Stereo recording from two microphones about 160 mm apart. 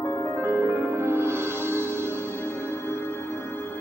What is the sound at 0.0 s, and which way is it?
Music, 15° left (ahead or behind).